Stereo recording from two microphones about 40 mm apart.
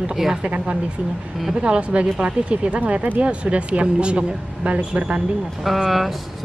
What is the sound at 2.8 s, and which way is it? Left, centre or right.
A woman's voice, right.